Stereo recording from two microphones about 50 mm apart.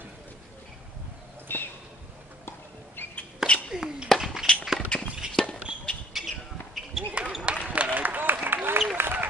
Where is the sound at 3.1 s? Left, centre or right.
Left.